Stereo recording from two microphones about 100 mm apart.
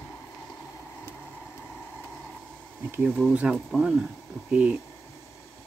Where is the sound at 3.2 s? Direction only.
10° right (ahead or behind).